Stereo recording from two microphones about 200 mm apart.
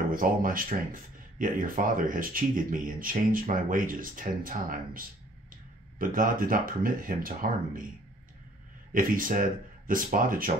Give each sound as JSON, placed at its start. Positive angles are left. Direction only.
{"t": 0.1, "sound": "speech", "side_deg": -45}
{"t": 8.9, "sound": "speech", "side_deg": -45}